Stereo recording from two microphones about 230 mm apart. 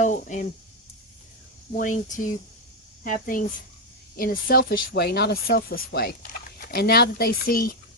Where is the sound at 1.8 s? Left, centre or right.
Left.